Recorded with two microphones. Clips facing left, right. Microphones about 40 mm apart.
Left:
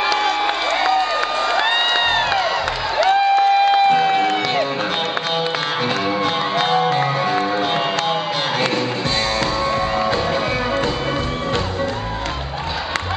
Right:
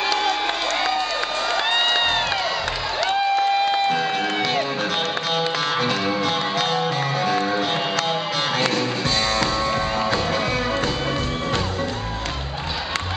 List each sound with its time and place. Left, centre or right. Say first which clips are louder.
0.1 s crowd: left 3 dB; centre
1.5 s music: left 1 dB; centre
6.2 s music: left 3 dB; left
9.4 s music: left 2 dB; centre